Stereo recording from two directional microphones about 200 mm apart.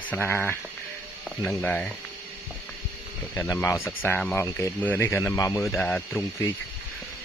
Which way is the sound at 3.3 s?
15° left (ahead or behind).